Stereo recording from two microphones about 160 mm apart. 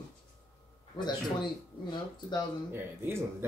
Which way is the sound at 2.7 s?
15° right (ahead or behind).